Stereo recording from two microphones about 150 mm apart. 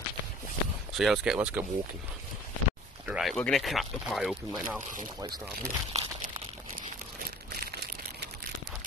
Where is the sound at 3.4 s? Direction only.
Centre (ahead or behind).